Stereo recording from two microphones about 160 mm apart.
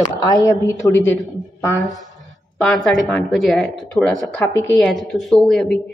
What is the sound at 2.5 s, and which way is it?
Speech, centre (ahead or behind).